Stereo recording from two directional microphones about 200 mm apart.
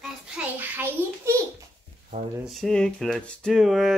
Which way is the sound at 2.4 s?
Centre (ahead or behind).